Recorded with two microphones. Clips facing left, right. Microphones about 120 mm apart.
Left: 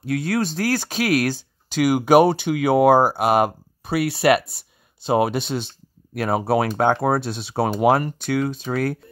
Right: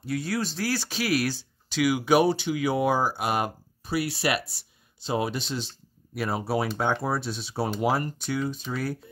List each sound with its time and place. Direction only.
0.0 s speech: 55° left (ahead or behind)